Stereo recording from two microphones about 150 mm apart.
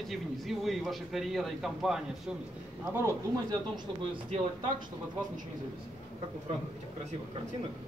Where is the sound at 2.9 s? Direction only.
15° right (ahead or behind).